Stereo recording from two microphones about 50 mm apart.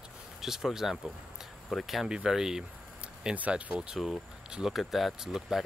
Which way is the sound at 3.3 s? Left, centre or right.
Right.